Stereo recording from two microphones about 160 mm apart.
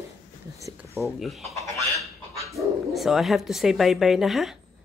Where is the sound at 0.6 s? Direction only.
20° right (ahead or behind).